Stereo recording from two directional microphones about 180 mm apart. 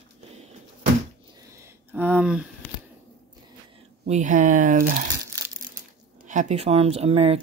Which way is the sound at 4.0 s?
45° right (ahead or behind).